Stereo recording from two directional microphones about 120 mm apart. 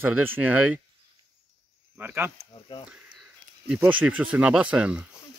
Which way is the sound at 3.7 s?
15° right (ahead or behind).